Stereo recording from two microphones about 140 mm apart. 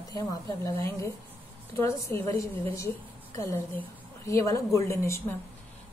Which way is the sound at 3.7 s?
20° left (ahead or behind).